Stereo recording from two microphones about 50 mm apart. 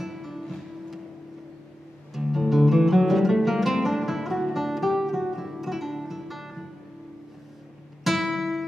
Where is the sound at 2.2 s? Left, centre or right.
Centre.